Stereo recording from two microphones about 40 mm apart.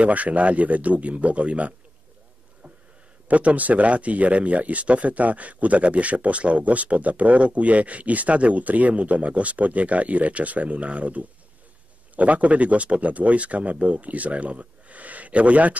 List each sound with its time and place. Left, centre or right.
0.0 s speech: right
3.3 s speech: right